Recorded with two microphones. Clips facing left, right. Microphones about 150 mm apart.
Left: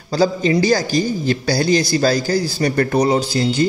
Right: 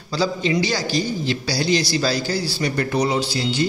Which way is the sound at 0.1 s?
45° left (ahead or behind).